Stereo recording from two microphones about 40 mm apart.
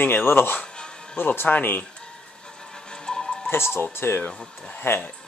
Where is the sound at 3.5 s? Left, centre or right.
Left.